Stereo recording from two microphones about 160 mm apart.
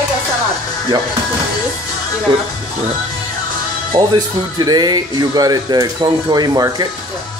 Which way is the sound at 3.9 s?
25° right (ahead or behind).